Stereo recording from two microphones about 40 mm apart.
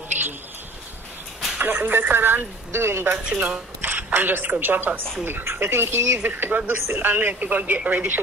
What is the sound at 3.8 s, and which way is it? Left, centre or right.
A woman's voice, right.